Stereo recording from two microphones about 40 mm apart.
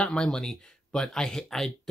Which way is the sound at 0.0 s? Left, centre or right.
Left.